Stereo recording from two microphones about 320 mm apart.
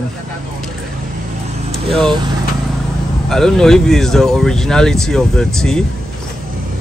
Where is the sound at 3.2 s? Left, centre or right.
Centre.